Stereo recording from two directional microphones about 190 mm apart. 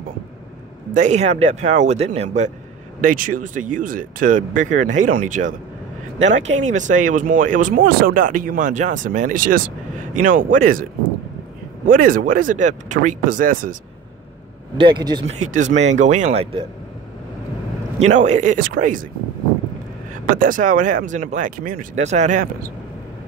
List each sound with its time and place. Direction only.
0.9 s a man's voice: 40° right (ahead or behind)
14.8 s speech: 25° right (ahead or behind)
15.5 s a man's voice: 40° right (ahead or behind)
17.9 s a man's voice: 35° right (ahead or behind)
20.3 s speech: 45° right (ahead or behind)